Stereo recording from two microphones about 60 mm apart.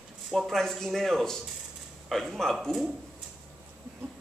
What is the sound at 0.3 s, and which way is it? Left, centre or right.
A man's voice, centre.